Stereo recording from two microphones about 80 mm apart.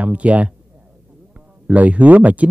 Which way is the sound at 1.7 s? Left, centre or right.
Centre.